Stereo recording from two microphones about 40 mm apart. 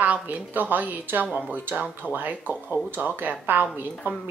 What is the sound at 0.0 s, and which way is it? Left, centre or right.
A woman's voice, right.